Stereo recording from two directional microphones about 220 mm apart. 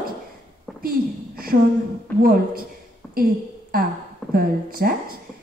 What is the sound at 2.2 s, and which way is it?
Speech, 40° right (ahead or behind).